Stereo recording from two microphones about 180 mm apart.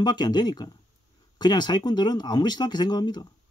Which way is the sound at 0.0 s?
25° left (ahead or behind).